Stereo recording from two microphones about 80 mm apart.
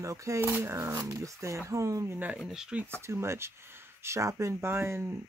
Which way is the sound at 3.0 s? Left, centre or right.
Right.